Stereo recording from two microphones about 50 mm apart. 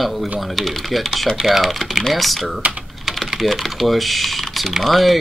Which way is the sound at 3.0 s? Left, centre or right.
Centre.